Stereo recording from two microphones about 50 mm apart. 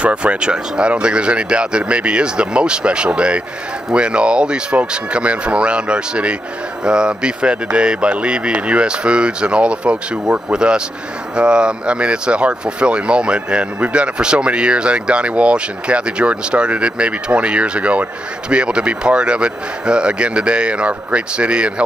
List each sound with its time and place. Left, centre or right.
0.0 s speech: right